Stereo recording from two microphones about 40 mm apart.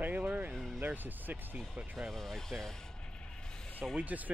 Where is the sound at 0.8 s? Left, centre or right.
Right.